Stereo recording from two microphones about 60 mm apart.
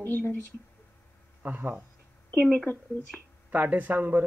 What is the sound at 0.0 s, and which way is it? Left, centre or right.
Speech, left.